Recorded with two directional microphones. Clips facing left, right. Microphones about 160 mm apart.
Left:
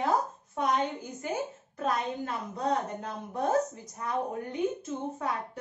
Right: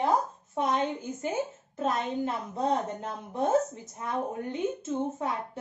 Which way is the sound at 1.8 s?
25° right (ahead or behind).